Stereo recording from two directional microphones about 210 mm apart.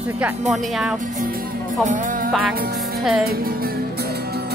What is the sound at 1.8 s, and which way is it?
Music, 40° right (ahead or behind).